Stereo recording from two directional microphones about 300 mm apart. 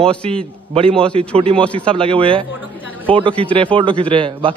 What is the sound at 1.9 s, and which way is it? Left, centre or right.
A man's voice, centre.